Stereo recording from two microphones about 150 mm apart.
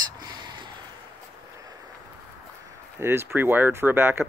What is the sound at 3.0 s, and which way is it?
Speech, 15° right (ahead or behind).